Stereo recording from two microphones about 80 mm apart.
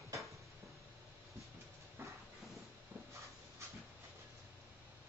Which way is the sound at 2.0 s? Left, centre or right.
Right.